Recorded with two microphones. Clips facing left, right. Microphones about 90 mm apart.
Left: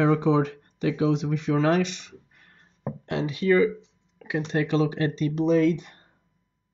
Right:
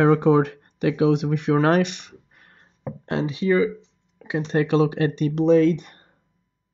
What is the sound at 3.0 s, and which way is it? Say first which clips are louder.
Speech: right 1 dB; 30° right (ahead or behind).